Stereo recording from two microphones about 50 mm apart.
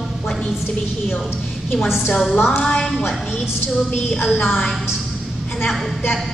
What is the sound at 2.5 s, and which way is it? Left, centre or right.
Speech, left.